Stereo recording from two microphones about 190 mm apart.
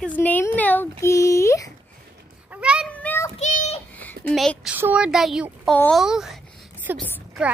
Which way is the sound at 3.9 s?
10° left (ahead or behind).